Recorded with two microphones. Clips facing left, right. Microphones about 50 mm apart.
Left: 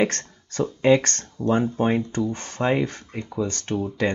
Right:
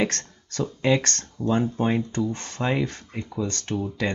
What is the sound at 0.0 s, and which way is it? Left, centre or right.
Speech, left.